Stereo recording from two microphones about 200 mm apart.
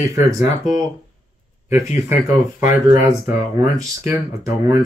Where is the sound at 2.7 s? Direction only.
20° right (ahead or behind).